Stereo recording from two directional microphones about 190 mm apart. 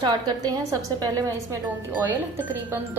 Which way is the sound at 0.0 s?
20° right (ahead or behind).